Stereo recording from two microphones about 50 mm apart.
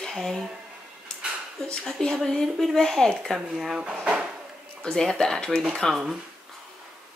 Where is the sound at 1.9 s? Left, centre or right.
Centre.